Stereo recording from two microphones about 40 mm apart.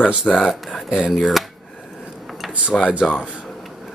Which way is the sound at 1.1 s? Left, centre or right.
Centre.